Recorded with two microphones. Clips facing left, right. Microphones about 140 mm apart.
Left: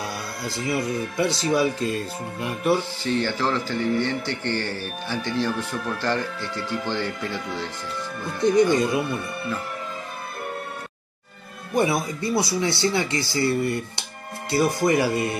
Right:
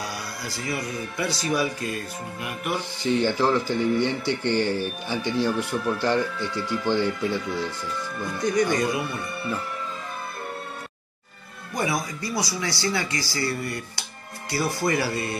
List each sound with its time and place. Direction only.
0.0 s speech: 25° left (ahead or behind)
3.0 s speech: 15° right (ahead or behind)
8.4 s speech: 25° left (ahead or behind)
11.7 s speech: 25° left (ahead or behind)